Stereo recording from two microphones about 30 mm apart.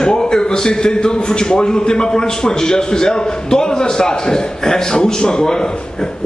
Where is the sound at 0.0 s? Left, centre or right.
Left.